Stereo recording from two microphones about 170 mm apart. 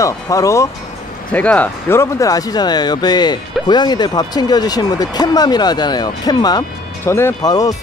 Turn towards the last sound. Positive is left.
turn(degrees=20)  # may be behind; listen again after turning